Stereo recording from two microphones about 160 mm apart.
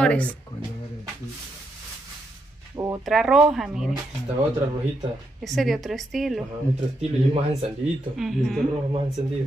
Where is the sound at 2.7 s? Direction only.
20° right (ahead or behind).